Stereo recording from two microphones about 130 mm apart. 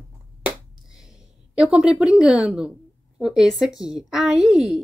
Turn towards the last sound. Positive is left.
turn(degrees=-5)  # may be behind; listen again after turning